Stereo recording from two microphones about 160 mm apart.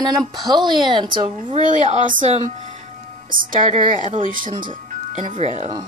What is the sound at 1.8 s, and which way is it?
Speech, 50° right (ahead or behind).